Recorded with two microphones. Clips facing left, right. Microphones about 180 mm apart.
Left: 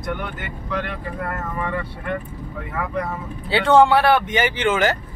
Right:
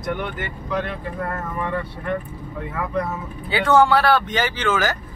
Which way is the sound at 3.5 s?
30° left (ahead or behind).